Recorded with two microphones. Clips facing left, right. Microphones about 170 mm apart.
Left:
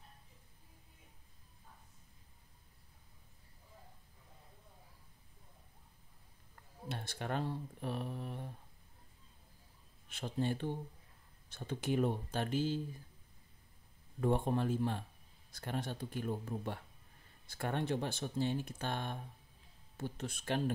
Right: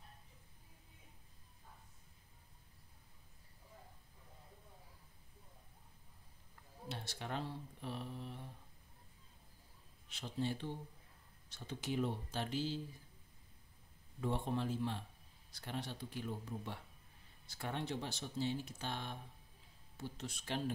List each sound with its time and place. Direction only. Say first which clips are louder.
6.5 s speech: left 3 dB; 55° left (ahead or behind)
10.0 s speech: left 4 dB; 50° left (ahead or behind)
14.2 s speech: left 6 dB; 50° left (ahead or behind)